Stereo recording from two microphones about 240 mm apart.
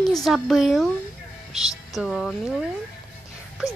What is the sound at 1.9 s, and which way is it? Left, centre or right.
Speech, centre.